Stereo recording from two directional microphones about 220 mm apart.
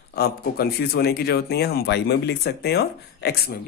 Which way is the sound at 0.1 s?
45° left (ahead or behind).